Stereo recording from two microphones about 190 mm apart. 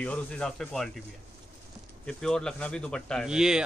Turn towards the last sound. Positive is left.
turn(degrees=-5)  # may be behind; listen again after turning